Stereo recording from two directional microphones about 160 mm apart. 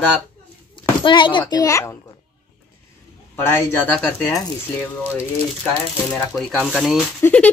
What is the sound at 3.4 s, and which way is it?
Speech, 15° left (ahead or behind).